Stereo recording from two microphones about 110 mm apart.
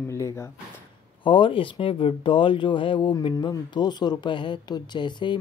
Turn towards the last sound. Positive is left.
turn(degrees=45)  # may be behind; listen again after turning